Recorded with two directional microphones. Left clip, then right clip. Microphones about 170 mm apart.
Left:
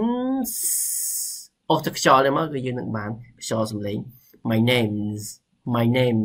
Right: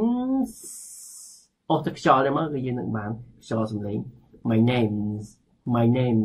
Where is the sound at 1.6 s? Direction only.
15° left (ahead or behind).